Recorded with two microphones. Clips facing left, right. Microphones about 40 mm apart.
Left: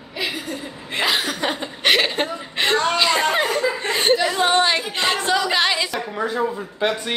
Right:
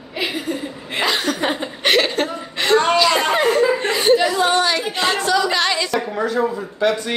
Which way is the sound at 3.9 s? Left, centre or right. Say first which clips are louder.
Right 1 dB; left.